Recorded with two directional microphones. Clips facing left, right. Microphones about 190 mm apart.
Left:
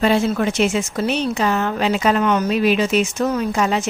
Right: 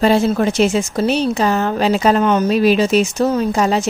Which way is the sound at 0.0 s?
35° right (ahead or behind).